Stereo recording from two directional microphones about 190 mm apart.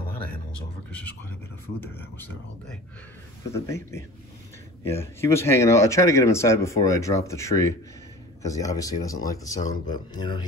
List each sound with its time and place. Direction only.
1.8 s speech: 10° left (ahead or behind)
3.5 s speech: 15° left (ahead or behind)